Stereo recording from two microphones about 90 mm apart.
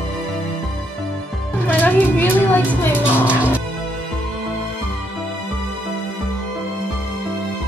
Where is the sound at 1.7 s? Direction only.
20° left (ahead or behind).